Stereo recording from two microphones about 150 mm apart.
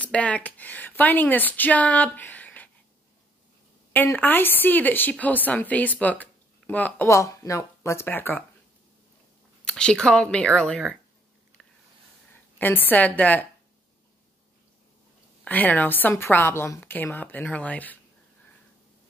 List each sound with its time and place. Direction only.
0.0 s a woman's voice: 10° left (ahead or behind)
3.9 s a woman's voice: 15° left (ahead or behind)
9.7 s a woman's voice: 5° left (ahead or behind)
12.5 s a woman's voice: 10° left (ahead or behind)
15.4 s a woman's voice: 10° left (ahead or behind)